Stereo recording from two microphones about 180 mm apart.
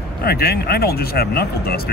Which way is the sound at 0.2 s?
60° left (ahead or behind).